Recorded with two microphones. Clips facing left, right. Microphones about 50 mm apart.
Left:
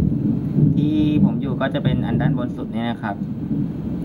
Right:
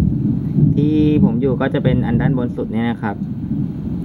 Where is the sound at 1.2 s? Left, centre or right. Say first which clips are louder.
Right 4 dB; right.